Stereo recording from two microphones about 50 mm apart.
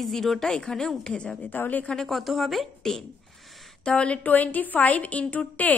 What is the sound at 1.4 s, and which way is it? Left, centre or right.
Speech, left.